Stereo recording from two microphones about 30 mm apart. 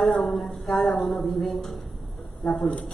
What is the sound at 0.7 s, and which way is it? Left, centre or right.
Speech, left.